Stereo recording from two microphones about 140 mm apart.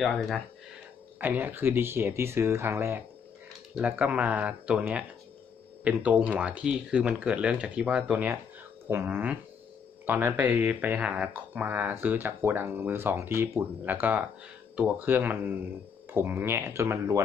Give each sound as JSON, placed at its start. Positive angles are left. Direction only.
{"t": 0.0, "sound": "speech", "side_deg": 0}
{"t": 1.2, "sound": "speech", "side_deg": -15}